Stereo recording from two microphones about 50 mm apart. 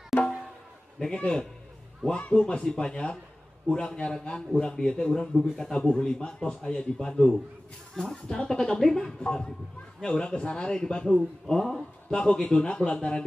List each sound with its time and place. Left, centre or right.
1.1 s a man's voice: centre
9.2 s a man's voice: left